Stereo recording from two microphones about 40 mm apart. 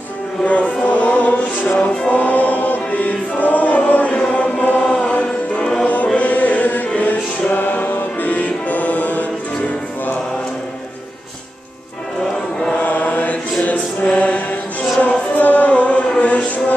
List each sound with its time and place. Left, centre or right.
0.5 s music: left
1.8 s music: left
2.1 s choir: left
4.3 s chant: left
6.1 s chant: left
7.0 s music: left
12.7 s chant: left
14.1 s mantra: left
15.0 s music: left
16.2 s chant: left